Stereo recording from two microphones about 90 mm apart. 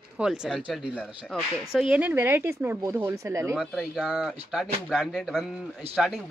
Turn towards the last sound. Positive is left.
turn(degrees=0)  # may be behind; listen again after turning